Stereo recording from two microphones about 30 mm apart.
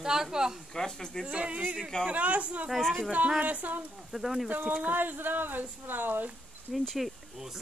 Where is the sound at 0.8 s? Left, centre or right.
Left.